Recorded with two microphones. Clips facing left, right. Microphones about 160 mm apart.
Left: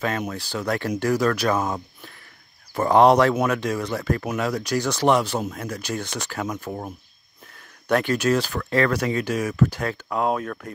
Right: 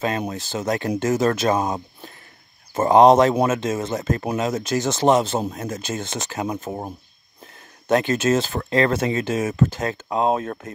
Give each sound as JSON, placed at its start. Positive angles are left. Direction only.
{"t": 0.0, "sound": "speech", "side_deg": -20}
{"t": 7.9, "sound": "speech", "side_deg": -20}